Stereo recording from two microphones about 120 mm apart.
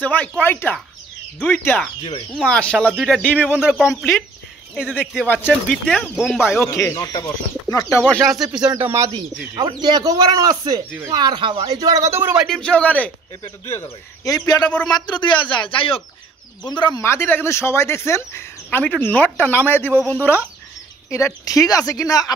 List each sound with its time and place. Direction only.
0.0 s a man's voice: 10° left (ahead or behind); by 5.0 s 5° right (ahead or behind)
5.0 s a man's voice: 5° left (ahead or behind)
6.1 s a man's voice: 5° right (ahead or behind)
6.4 s speech: 20° left (ahead or behind)
8.0 s a man's voice: 5° left (ahead or behind)
8.7 s speech: 25° right (ahead or behind)
9.6 s speech: 40° right (ahead or behind); by 12.4 s 20° right (ahead or behind)
12.4 s a man's voice: 5° left (ahead or behind)
13.7 s speech: 25° left (ahead or behind)
14.6 s a man's voice: 10° left (ahead or behind)
14.9 s speech: 35° left (ahead or behind)
17.0 s speech: 20° left (ahead or behind)
19.9 s speech: 15° right (ahead or behind)
20.2 s a man's voice: 15° left (ahead or behind)